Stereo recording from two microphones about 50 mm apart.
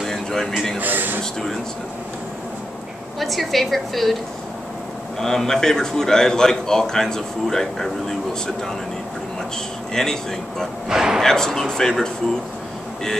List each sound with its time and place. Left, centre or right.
0.0 s a sound: centre
0.7 s a sound: right
3.2 s a woman's voice: centre
5.2 s a man's voice: centre
10.0 s a man's voice: centre
10.9 s speech: centre
11.1 s a man's voice: centre